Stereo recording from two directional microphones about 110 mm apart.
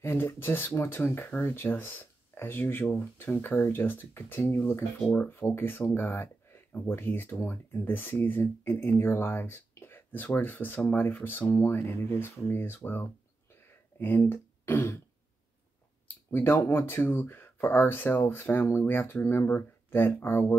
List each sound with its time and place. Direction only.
0.0 s speech: 20° left (ahead or behind)
16.3 s speech: 20° left (ahead or behind)